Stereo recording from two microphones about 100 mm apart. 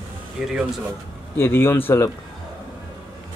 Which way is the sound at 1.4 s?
25° left (ahead or behind).